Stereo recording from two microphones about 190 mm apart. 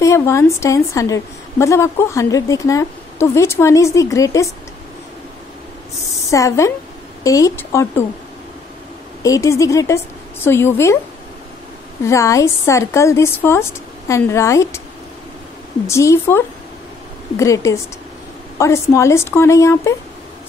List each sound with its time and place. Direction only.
0.0 s a woman's voice: 15° left (ahead or behind)
6.3 s a woman's voice: 15° left (ahead or behind)
9.2 s a woman's voice: 15° left (ahead or behind)
12.0 s a woman's voice: 15° left (ahead or behind)
15.9 s a woman's voice: 15° left (ahead or behind)